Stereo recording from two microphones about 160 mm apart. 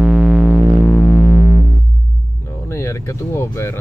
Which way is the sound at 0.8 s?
10° left (ahead or behind).